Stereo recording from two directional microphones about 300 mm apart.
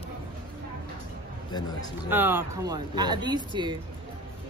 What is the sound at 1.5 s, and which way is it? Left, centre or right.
Speech, centre.